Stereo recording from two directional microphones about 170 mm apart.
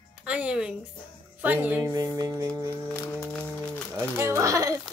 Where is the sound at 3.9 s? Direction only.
15° right (ahead or behind).